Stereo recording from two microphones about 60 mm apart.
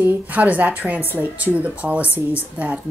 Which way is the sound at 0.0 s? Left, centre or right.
Right.